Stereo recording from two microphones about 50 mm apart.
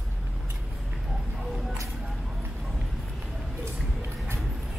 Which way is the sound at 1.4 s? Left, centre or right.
Centre.